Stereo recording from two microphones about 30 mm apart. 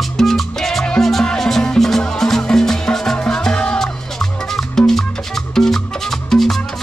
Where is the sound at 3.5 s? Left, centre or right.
Left.